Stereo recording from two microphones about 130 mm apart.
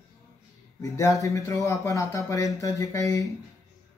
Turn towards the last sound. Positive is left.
turn(degrees=25)  # may be behind; listen again after turning